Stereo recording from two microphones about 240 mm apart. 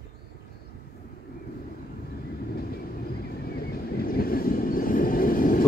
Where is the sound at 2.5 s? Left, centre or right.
Left.